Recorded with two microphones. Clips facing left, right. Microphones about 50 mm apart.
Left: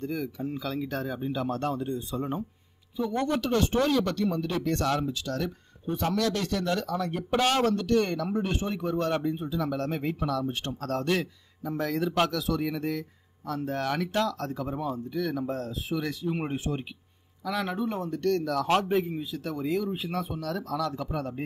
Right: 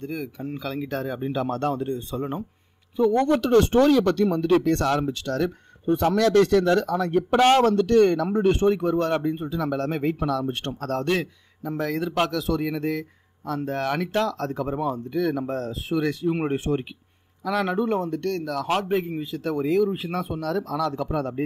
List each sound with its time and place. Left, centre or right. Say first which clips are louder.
0.0 s speech: right 1 dB; right
3.0 s speech: right 8 dB; right
9.1 s speech: right 4 dB; right